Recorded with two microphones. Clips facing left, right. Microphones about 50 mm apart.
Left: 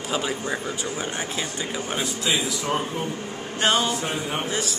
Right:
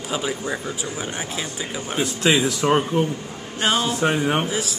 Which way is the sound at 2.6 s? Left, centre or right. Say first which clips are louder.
Right 8 dB; right.